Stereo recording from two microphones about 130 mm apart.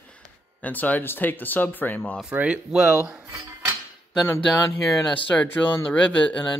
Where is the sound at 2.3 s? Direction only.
10° right (ahead or behind).